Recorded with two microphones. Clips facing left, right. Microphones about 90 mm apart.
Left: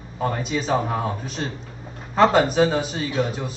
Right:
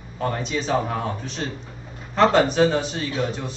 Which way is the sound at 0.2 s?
5° left (ahead or behind).